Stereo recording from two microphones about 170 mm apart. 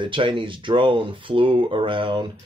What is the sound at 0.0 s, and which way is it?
Speech, 30° right (ahead or behind).